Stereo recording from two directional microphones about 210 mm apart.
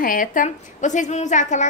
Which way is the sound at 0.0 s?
40° left (ahead or behind).